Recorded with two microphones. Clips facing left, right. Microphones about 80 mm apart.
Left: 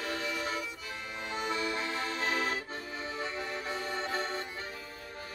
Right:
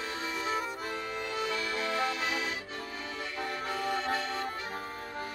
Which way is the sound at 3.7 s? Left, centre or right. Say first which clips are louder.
Right 6 dB; right.